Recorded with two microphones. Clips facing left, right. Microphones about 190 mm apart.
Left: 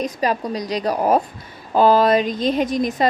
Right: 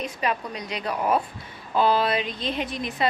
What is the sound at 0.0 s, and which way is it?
A woman's voice, 40° left (ahead or behind).